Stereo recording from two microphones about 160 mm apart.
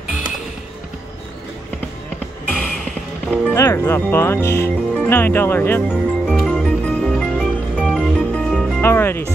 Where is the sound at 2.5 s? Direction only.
5° left (ahead or behind).